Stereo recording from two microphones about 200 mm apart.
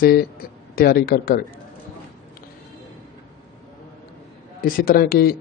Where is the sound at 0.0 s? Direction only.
45° left (ahead or behind).